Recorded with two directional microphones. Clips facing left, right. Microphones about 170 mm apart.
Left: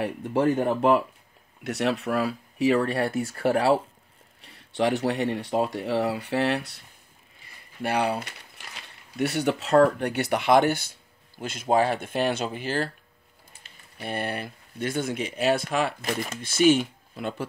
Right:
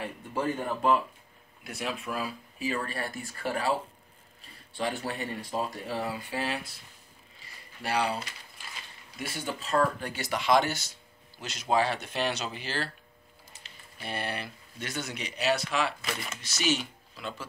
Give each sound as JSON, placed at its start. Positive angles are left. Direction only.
{"t": 0.0, "sound": "speech", "side_deg": 65}
{"t": 1.6, "sound": "speech", "side_deg": 75}
{"t": 7.3, "sound": "a sound", "side_deg": 55}
{"t": 9.1, "sound": "speech", "side_deg": 70}
{"t": 13.9, "sound": "speech", "side_deg": 50}